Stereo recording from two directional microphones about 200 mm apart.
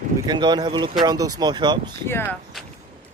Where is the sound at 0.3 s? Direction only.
20° right (ahead or behind).